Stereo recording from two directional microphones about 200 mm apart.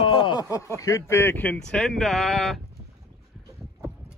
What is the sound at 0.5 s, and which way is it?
Speech, 15° left (ahead or behind).